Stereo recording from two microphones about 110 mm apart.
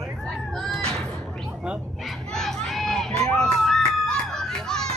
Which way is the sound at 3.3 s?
5° left (ahead or behind).